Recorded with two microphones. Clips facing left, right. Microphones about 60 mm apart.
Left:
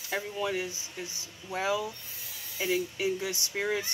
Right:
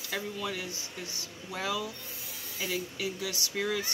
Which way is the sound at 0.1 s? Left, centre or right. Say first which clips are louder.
Left 4 dB; left.